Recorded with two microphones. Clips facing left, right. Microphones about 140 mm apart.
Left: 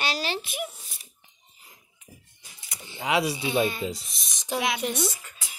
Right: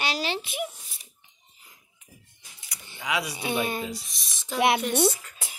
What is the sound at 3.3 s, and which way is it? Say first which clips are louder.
Speech: left 3 dB; 55° right (ahead or behind).